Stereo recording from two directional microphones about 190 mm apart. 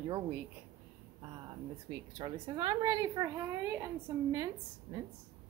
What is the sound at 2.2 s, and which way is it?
Speech, 25° right (ahead or behind).